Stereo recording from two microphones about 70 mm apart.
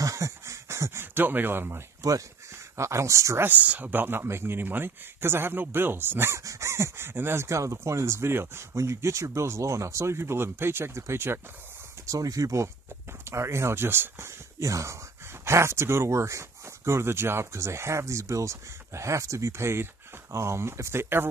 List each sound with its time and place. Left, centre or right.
0.0 s a sound: right
1.1 s speech: right
2.0 s speech: right
2.8 s speech: right
3.4 s speech: right
6.4 s speech: right
12.1 s speech: right
13.2 s speech: right
14.6 s speech: right